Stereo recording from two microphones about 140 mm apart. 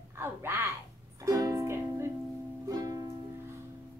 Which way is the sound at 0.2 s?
15° right (ahead or behind).